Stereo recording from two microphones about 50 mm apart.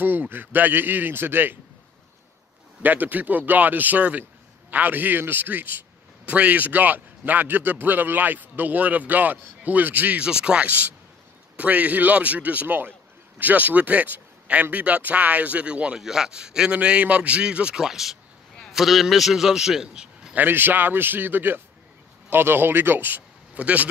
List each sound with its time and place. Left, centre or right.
0.0 s a man's voice: right
2.8 s a man's voice: right
10.2 s a man's voice: right
16.0 s a man's voice: centre
17.8 s a man's voice: centre
20.3 s a man's voice: right
23.5 s speech: right